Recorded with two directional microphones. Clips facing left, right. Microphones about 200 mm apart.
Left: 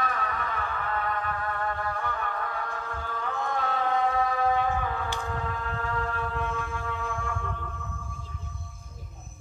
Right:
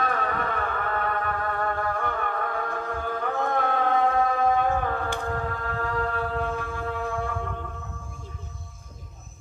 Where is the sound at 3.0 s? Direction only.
55° right (ahead or behind).